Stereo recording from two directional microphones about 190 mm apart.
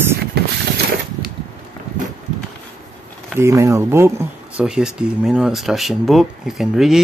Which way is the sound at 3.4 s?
15° right (ahead or behind).